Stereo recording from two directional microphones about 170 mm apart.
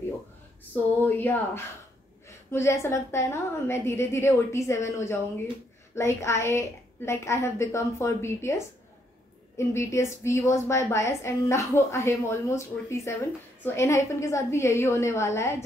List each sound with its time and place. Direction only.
1.0 s a woman's voice: 10° left (ahead or behind)
9.6 s a woman's voice: 15° left (ahead or behind)